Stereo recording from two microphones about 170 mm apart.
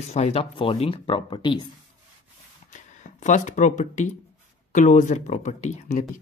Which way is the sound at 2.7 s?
45° left (ahead or behind).